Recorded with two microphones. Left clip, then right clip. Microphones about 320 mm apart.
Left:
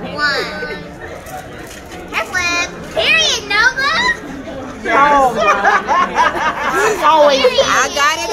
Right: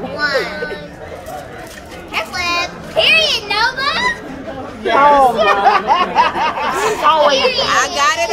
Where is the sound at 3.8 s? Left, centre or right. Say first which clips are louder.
Left 2 dB; centre.